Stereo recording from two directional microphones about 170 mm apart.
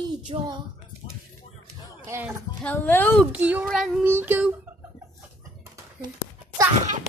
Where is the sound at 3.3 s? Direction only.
10° right (ahead or behind).